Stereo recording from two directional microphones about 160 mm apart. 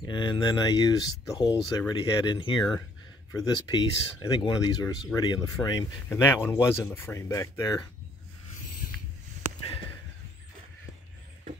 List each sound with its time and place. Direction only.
0.0 s speech: 30° left (ahead or behind)